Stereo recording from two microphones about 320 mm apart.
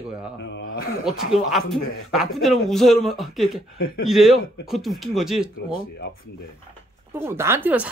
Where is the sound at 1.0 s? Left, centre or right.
Centre.